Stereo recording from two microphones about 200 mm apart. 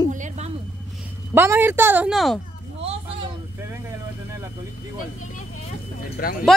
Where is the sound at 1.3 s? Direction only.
10° right (ahead or behind).